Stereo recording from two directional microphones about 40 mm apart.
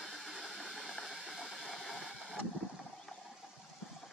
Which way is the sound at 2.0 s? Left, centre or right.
Centre.